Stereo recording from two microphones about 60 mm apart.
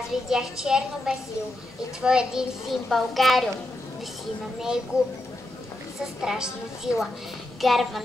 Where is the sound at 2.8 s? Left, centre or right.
Centre.